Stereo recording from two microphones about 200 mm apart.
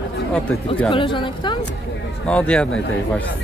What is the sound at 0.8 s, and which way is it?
Speech, 25° left (ahead or behind).